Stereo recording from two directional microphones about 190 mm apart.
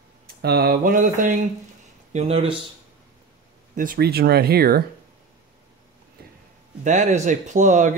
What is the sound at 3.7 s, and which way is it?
Speech, 45° right (ahead or behind).